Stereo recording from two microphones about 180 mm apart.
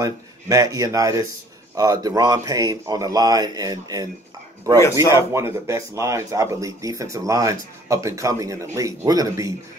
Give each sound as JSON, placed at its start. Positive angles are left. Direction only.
{"t": 0.0, "sound": "speech", "side_deg": -20}
{"t": 5.1, "sound": "speech", "side_deg": -15}